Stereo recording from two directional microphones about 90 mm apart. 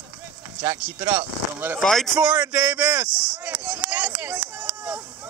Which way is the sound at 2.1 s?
15° right (ahead or behind).